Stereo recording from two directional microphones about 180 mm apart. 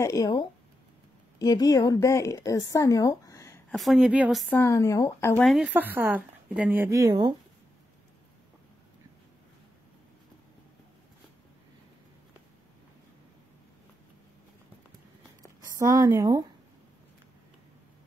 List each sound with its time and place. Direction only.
0.0 s a woman's voice: 20° left (ahead or behind)
3.7 s a woman's voice: centre (ahead or behind)
4.6 s speech: 15° left (ahead or behind)
5.4 s speech: centre (ahead or behind); by 7.3 s 25° right (ahead or behind)
15.6 s speech: 20° right (ahead or behind)